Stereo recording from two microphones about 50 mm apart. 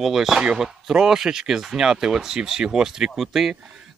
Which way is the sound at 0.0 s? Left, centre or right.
Centre.